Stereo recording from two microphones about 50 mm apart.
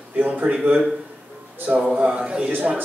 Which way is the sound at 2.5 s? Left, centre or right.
Right.